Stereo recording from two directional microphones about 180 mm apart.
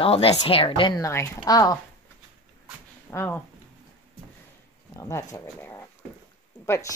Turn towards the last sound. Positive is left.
turn(degrees=20)  # may be behind; listen again after turning